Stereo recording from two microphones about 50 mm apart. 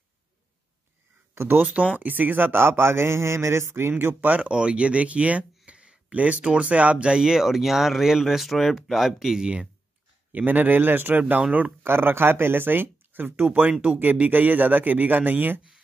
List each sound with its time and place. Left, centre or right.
1.6 s speech: right
4.1 s speech: right
4.5 s speech: right
10.3 s speech: right
11.8 s speech: right
13.5 s speech: right